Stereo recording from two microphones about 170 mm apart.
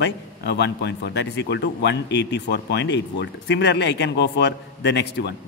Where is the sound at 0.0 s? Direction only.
85° left.